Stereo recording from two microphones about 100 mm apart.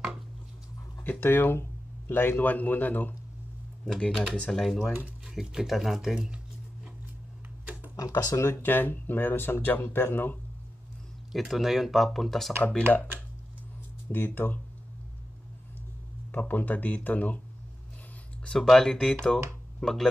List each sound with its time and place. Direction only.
1.0 s speech: 20° left (ahead or behind)
3.8 s speech: 5° left (ahead or behind)
5.2 s a sound: 5° right (ahead or behind)
7.9 s speech: 35° left (ahead or behind)
11.3 s speech: centre (ahead or behind)
14.1 s speech: 20° left (ahead or behind)
16.3 s speech: 15° left (ahead or behind)
18.4 s speech: 5° left (ahead or behind)